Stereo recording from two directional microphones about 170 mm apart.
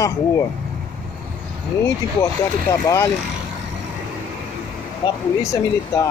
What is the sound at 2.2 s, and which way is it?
Speech, 15° left (ahead or behind).